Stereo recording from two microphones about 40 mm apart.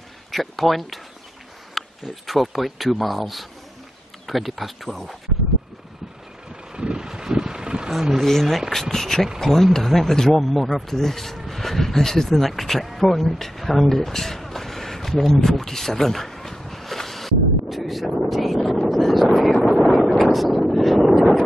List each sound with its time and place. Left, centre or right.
0.3 s speech: centre
1.8 s a sound: centre
2.2 s speech: centre
6.7 s vehicle: right
7.9 s speech: centre
9.4 s a sound: centre